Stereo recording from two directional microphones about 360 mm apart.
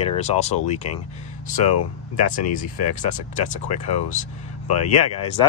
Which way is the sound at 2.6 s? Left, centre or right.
Left.